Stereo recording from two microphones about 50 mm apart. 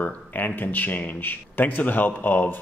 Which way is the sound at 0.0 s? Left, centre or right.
Left.